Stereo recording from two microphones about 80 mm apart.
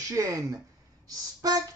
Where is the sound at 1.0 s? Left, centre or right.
Right.